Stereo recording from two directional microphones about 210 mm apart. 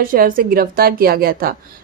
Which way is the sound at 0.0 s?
45° right (ahead or behind).